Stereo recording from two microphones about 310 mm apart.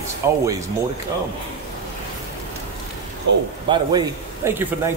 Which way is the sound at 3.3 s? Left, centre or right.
Right.